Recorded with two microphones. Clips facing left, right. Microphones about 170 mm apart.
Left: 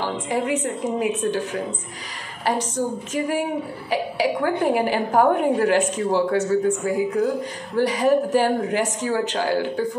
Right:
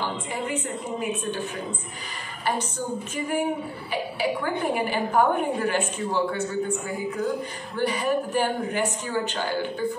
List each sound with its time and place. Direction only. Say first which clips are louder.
0.3 s a woman's voice: left 6 dB; 90° left
3.2 s a woman's voice: left 3 dB; 90° left